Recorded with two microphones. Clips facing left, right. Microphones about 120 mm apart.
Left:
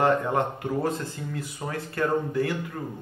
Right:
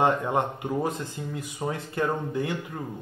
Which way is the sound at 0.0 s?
20° right (ahead or behind).